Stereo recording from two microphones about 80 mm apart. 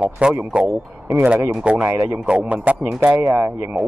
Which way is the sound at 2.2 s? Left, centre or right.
Centre.